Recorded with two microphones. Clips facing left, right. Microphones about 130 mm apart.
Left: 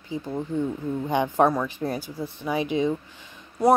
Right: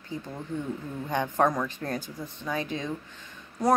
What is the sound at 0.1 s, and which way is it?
Speech, 15° left (ahead or behind).